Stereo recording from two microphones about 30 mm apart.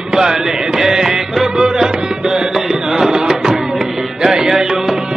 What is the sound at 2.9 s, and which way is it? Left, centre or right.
Music, centre.